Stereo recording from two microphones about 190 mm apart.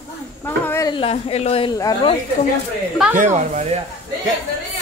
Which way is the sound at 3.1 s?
40° right (ahead or behind).